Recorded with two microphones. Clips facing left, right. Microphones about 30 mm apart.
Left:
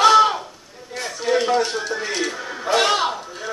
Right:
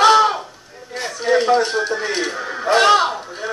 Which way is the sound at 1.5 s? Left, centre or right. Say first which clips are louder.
Right 4 dB; right.